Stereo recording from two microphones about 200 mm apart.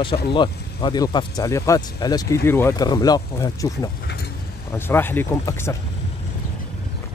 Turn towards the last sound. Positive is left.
turn(degrees=15)  # may be behind; listen again after turning